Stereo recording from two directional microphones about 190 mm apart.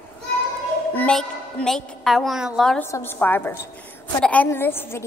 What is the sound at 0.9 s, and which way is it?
A woman's voice, 5° left (ahead or behind).